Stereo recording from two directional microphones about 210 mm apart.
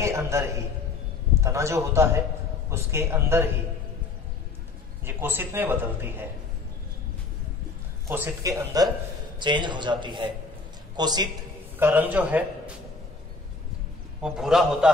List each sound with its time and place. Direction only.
0.0 s a man's voice: 15° right (ahead or behind)
5.0 s a man's voice: 10° right (ahead or behind)
8.1 s a man's voice: 15° right (ahead or behind)
11.8 s a man's voice: 10° right (ahead or behind)
14.2 s a man's voice: centre (ahead or behind)